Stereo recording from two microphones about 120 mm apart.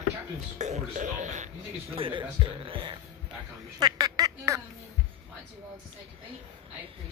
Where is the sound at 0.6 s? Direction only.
75° right (ahead or behind).